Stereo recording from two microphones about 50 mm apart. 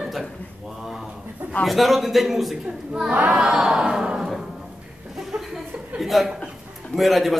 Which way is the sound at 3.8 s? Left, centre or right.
Centre.